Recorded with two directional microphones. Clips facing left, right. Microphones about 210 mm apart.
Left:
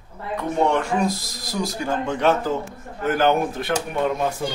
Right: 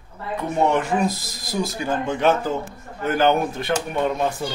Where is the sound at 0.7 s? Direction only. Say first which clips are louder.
Even; 5° right (ahead or behind).